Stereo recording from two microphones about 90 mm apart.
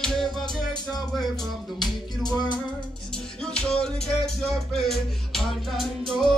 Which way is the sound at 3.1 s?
10° left (ahead or behind).